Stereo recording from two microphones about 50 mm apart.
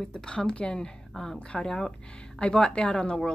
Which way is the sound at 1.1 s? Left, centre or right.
Centre.